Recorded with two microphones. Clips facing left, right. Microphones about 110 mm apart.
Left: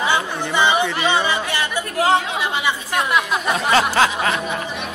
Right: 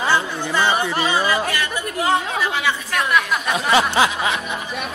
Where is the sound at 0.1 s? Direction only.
20° left (ahead or behind).